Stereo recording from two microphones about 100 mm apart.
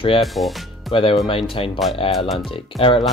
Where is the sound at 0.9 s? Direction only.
55° left (ahead or behind).